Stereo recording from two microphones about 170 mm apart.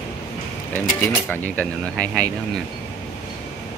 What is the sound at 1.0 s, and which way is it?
Speech, 10° left (ahead or behind).